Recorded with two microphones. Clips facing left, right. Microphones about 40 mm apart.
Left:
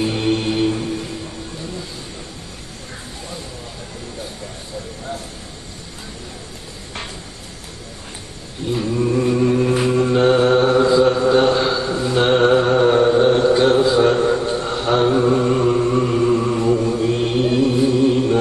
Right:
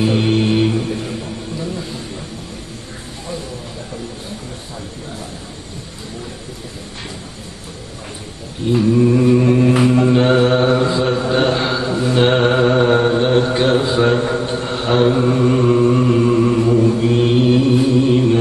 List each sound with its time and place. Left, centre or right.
0.0 s chant: right
8.7 s a sound: centre
9.9 s mantra: right
15.0 s chant: centre
17.0 s mantra: right